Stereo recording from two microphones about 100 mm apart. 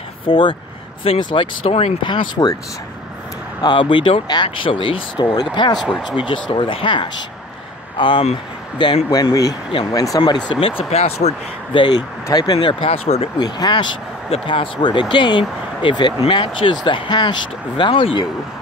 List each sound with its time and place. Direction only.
0.2 s speech: 60° left (ahead or behind); by 2.0 s 85° left
2.0 s speech: 45° left (ahead or behind)
3.6 s speech: 55° left (ahead or behind)
5.1 s speech: 45° left (ahead or behind)
5.8 s speech: 5° right (ahead or behind)
6.0 s speech: 60° left (ahead or behind)
9.1 s speech: 35° left (ahead or behind)
10.2 s speech: 55° left (ahead or behind)
10.8 s speech: 90° left
11.7 s speech: 55° left (ahead or behind)
12.3 s speech: 45° left (ahead or behind)
12.5 s speech: 65° left (ahead or behind)
13.4 s speech: 45° left (ahead or behind)